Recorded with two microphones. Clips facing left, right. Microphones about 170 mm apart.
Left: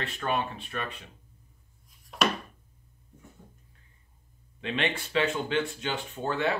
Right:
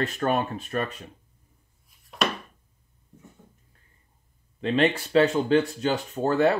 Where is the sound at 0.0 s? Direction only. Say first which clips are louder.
Right 6 dB; 45° right (ahead or behind).